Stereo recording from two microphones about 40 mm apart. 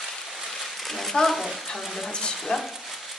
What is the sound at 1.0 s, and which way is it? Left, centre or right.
Speech, centre.